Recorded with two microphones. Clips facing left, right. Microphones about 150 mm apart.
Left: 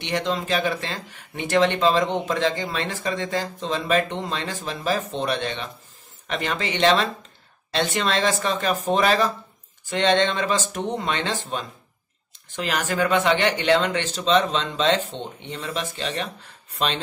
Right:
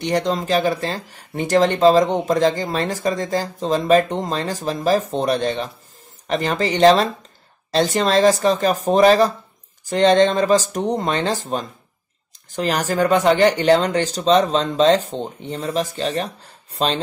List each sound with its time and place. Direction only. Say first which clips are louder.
0.0 s speech: right 5 dB; 40° right (ahead or behind)